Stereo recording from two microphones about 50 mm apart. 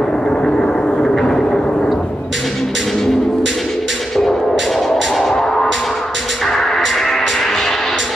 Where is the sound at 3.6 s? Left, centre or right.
Centre.